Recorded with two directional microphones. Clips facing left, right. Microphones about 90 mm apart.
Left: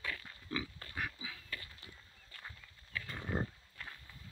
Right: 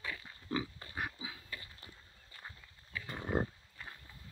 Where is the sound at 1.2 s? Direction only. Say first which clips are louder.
Even; 20° right (ahead or behind).